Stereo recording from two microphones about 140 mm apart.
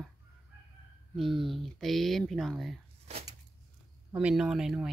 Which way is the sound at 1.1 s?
Centre (ahead or behind).